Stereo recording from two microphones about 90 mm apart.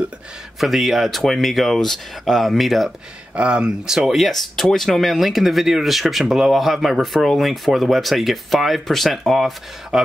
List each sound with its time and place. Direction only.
0.6 s speech: centre (ahead or behind)
3.3 s speech: 10° right (ahead or behind)